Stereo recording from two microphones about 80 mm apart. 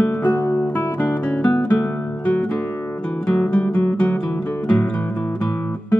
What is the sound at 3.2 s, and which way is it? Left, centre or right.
Music, centre.